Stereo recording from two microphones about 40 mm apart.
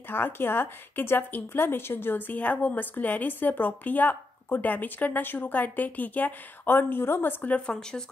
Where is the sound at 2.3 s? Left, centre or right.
Left.